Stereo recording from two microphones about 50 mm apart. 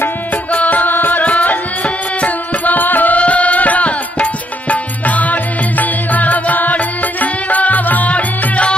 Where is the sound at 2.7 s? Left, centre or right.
Left.